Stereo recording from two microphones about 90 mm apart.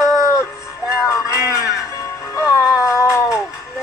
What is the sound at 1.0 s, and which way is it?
Music, 35° left (ahead or behind).